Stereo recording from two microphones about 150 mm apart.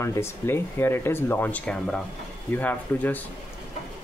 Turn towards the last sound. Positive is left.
turn(degrees=10)  # may be behind; listen again after turning